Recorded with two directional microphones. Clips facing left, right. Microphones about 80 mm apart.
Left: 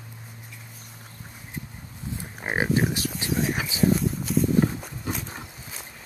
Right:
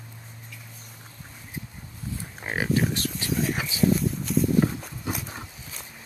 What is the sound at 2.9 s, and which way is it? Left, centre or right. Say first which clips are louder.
Speech: even; centre.